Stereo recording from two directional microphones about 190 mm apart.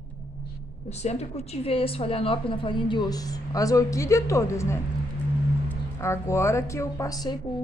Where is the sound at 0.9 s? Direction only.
35° left (ahead or behind); by 7.3 s 20° left (ahead or behind).